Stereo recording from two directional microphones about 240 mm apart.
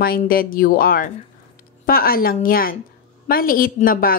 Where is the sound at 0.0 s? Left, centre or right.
Left.